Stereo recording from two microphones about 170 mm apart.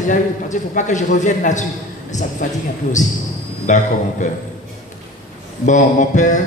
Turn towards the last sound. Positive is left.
turn(degrees=45)  # may be behind; listen again after turning